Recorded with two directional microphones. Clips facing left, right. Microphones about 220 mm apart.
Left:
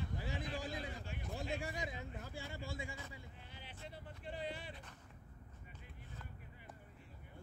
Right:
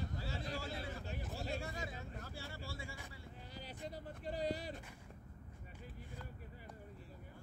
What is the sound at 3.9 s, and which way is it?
Speech, 40° right (ahead or behind).